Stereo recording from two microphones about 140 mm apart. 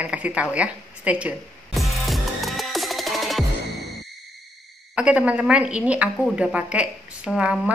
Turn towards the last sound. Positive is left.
turn(degrees=-5)  # may be behind; listen again after turning